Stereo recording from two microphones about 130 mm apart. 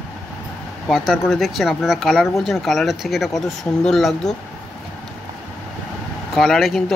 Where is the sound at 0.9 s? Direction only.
Centre (ahead or behind).